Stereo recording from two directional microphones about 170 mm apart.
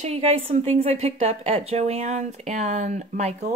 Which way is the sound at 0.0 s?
35° right (ahead or behind).